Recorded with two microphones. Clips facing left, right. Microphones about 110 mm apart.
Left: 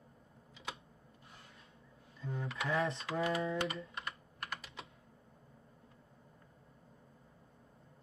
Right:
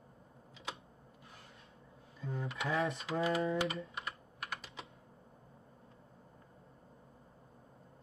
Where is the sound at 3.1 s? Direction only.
25° right (ahead or behind).